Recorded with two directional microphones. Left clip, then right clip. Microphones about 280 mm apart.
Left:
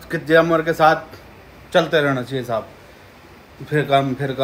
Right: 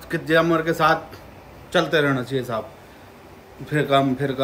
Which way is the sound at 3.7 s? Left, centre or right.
Centre.